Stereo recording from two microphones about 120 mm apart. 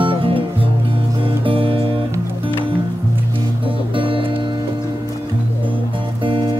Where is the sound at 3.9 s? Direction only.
45° right (ahead or behind).